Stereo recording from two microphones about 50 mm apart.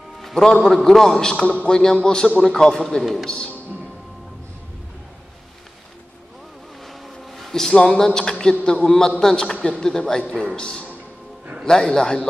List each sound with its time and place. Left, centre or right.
0.2 s music: centre
0.8 s a man's voice: centre
3.0 s a man's voice: centre
3.3 s a man's voice: left
7.3 s a sound: centre
7.7 s a man's voice: centre